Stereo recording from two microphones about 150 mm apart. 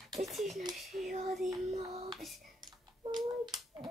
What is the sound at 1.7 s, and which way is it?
Child singing, 40° right (ahead or behind).